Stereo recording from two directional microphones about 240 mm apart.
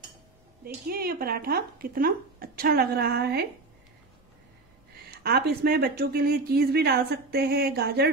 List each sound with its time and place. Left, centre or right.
0.8 s speech: right
5.2 s speech: right